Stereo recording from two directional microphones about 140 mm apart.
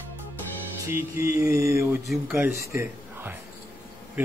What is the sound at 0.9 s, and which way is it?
Mantra, 20° right (ahead or behind).